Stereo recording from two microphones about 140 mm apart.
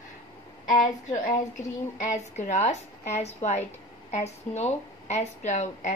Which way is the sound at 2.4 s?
55° left (ahead or behind).